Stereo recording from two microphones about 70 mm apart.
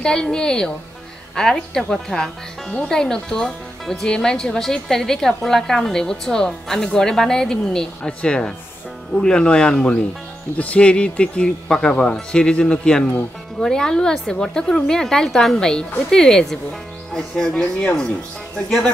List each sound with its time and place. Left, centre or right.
0.0 s speech: centre